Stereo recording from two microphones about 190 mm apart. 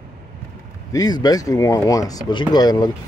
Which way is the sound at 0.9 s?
20° left (ahead or behind).